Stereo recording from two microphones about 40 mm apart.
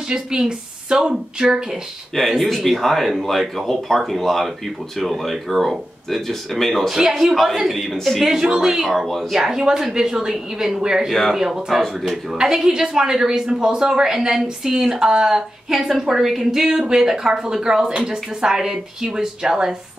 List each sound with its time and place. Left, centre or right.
0.1 s speech: centre
2.1 s speech: centre
6.9 s speech: centre
9.3 s speech: centre
11.1 s speech: centre
11.3 s speech: centre
16.7 s speech: centre